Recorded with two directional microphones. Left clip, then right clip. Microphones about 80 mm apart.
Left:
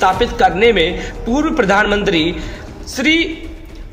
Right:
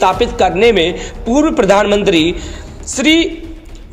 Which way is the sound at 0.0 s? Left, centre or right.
Right.